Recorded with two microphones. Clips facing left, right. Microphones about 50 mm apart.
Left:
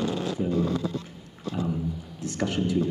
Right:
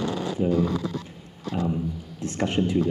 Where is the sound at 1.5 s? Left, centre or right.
Right.